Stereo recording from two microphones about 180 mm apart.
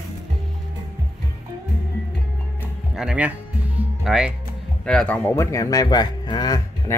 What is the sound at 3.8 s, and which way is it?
Music, 5° right (ahead or behind).